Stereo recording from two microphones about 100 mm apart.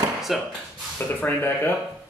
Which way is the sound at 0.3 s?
Centre (ahead or behind).